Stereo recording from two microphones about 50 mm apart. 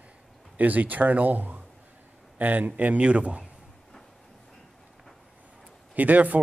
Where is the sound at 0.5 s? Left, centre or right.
Right.